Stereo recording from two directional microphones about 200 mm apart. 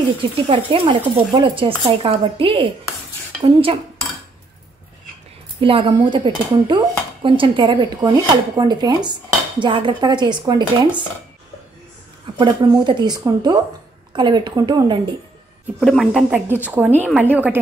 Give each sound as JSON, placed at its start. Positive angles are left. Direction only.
{"t": 0.4, "sound": "speech", "side_deg": -25}
{"t": 5.6, "sound": "speech", "side_deg": -25}
{"t": 12.4, "sound": "speech", "side_deg": -25}
{"t": 15.8, "sound": "a woman's voice", "side_deg": 0}